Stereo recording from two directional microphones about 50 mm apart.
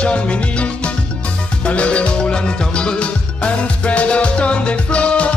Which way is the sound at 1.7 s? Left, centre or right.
Left.